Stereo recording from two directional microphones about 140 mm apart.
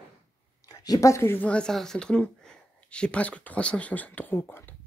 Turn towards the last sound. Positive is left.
turn(degrees=15)  # may be behind; listen again after turning